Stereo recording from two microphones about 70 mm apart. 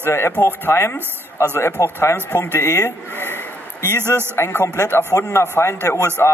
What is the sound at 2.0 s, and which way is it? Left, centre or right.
Speech, left.